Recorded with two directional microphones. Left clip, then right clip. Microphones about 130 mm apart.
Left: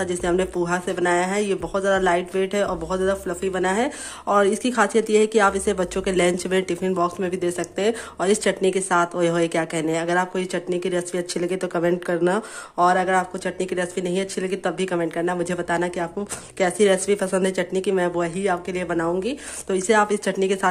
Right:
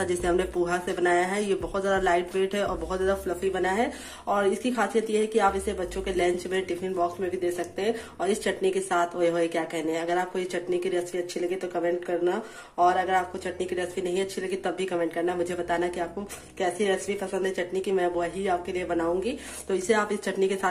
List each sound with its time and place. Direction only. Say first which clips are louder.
0.0 s speech: left 3 dB; 25° left (ahead or behind); by 16.1 s 45° left (ahead or behind)
16.5 s speech: left 7 dB; 65° left (ahead or behind); by 20.5 s 45° left (ahead or behind)